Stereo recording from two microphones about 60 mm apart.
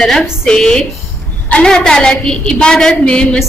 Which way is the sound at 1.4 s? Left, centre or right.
Left.